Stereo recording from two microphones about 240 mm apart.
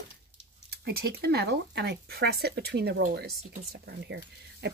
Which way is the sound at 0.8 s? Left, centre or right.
Right.